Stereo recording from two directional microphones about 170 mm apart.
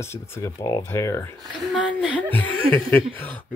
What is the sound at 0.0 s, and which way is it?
Speech, 15° left (ahead or behind).